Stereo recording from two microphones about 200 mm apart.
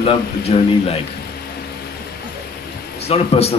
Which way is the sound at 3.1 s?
30° left (ahead or behind).